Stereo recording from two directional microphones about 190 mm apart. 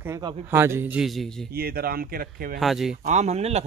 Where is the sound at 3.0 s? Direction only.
35° right (ahead or behind).